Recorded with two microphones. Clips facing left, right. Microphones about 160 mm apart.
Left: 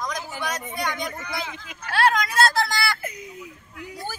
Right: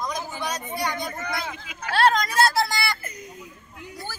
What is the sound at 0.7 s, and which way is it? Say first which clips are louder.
Speech: even; 45° right (ahead or behind).